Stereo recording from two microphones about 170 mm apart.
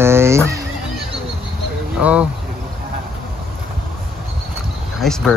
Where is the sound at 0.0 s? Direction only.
15° right (ahead or behind).